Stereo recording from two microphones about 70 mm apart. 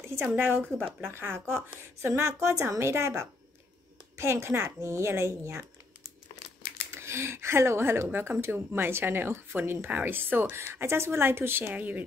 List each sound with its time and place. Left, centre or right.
0.1 s a woman's voice: right
6.9 s speech: right